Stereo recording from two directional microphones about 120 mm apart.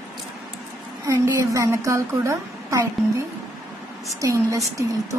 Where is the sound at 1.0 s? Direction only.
25° right (ahead or behind).